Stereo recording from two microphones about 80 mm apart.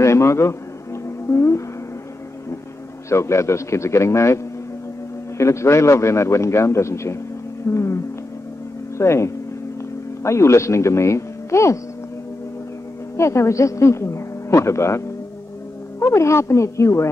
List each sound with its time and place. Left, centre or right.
0.0 s a man's voice: left
1.0 s music: left
3.1 s speech: left
5.4 s speech: left
13.2 s speech: left